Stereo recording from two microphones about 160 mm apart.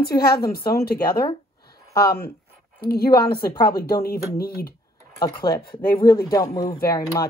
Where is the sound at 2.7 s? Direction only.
75° left (ahead or behind).